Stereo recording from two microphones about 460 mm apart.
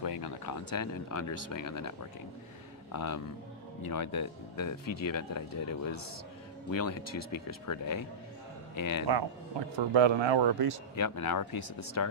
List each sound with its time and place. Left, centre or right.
0.0 s speech: left
2.9 s a man's voice: left
9.1 s a man's voice: right
9.8 s speech: right
11.0 s speech: left